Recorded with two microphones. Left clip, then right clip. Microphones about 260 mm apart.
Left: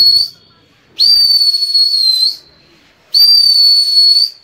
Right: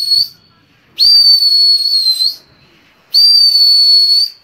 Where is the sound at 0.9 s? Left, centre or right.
Right.